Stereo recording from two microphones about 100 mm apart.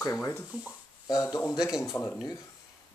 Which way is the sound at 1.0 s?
40° left (ahead or behind).